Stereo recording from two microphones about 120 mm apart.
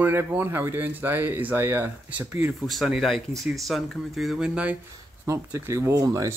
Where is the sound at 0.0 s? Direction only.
20° right (ahead or behind).